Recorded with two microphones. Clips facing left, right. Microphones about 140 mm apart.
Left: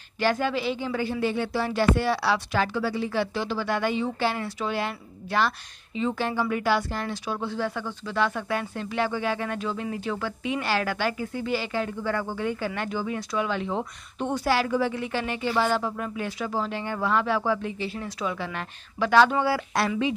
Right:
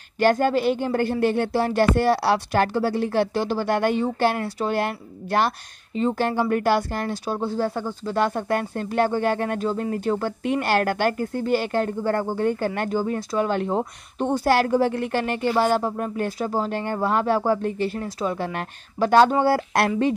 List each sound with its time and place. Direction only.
0.2 s speech: 50° right (ahead or behind)
4.5 s speech: 35° right (ahead or behind)
4.7 s speech: 50° right (ahead or behind)
14.5 s speech: 50° right (ahead or behind)
15.6 s speech: 45° right (ahead or behind)